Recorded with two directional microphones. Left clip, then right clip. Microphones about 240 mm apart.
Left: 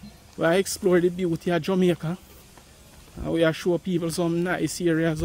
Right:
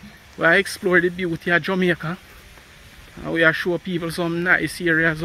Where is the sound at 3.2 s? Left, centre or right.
Centre.